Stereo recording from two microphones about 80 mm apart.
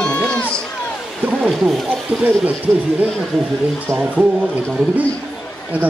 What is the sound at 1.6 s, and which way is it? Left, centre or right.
Speech, centre.